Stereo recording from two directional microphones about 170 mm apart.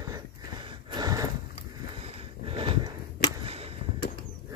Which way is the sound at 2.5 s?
30° right (ahead or behind).